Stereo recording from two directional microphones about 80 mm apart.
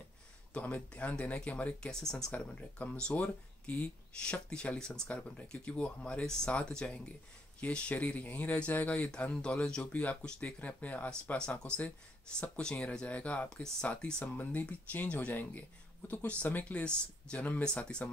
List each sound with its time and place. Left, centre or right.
0.5 s speech: centre
14.2 s speech: left